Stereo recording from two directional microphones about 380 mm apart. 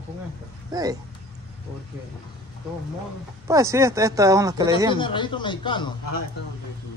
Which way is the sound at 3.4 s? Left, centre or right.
Centre.